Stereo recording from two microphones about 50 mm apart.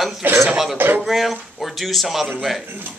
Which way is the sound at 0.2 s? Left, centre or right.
Right.